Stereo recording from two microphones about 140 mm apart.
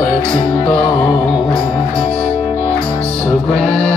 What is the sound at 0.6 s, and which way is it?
Music, 5° left (ahead or behind).